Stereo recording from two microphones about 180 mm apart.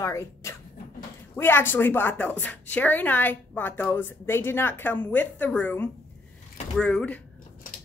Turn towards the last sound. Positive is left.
turn(degrees=5)  # may be behind; listen again after turning